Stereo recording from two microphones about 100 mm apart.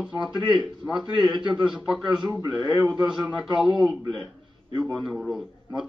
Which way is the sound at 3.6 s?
50° right (ahead or behind).